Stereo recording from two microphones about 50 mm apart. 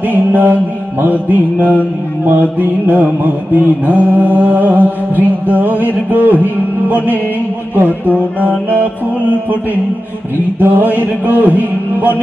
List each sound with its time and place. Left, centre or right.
0.0 s mantra: right
10.6 s mantra: right